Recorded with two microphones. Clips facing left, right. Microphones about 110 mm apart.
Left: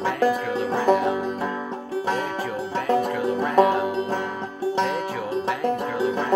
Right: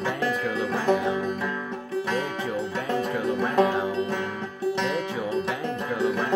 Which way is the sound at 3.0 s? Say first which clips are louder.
Left 2 dB; 30° left (ahead or behind).